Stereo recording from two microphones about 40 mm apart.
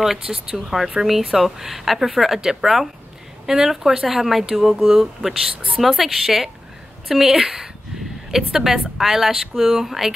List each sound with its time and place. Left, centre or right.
0.0 s speech: centre